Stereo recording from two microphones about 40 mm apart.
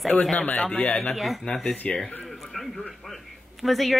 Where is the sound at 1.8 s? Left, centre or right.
Left.